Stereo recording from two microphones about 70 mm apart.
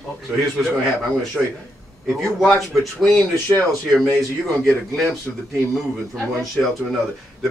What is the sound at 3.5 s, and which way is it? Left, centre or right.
Speech, left.